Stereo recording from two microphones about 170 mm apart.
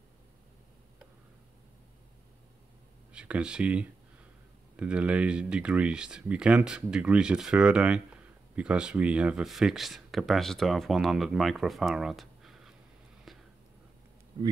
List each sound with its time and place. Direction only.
3.1 s speech: 5° right (ahead or behind)
14.3 s speech: 30° right (ahead or behind)